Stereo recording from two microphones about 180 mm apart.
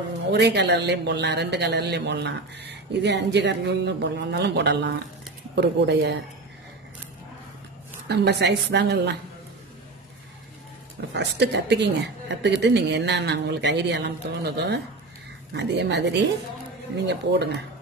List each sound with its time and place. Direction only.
0.3 s speech: 70° right (ahead or behind)
8.1 s speech: 70° right (ahead or behind)
11.1 s speech: 65° right (ahead or behind)